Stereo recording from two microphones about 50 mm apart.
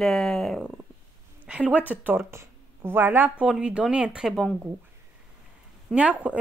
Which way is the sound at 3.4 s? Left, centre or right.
Right.